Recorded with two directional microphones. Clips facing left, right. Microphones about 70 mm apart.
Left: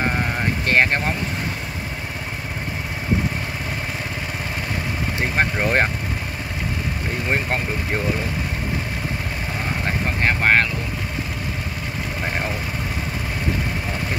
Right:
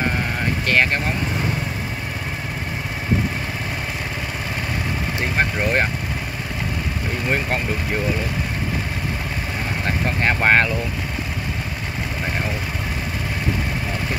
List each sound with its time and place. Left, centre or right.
0.7 s speech: left
5.4 s speech: left
10.2 s speech: centre